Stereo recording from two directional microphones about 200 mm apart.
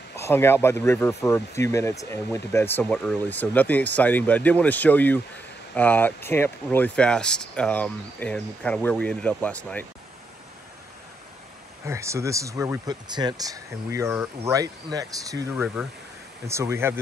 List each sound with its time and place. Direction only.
0.1 s speech: 10° left (ahead or behind)
11.8 s speech: 15° right (ahead or behind)
15.6 s speech: centre (ahead or behind)
16.4 s speech: 15° right (ahead or behind)